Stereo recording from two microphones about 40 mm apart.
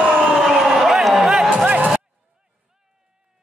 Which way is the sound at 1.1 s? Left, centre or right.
Centre.